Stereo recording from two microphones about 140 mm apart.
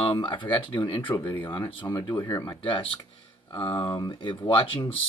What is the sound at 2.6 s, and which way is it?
Speech, 40° left (ahead or behind).